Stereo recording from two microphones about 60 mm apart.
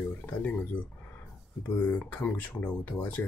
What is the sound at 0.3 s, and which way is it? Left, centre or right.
Speech, left.